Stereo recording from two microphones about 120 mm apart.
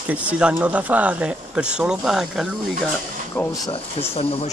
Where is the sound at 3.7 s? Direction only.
55° left (ahead or behind).